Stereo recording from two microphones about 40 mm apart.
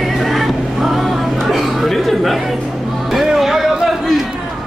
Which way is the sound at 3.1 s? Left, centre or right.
Centre.